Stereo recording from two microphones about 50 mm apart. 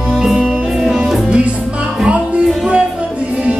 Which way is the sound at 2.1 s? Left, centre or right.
Right.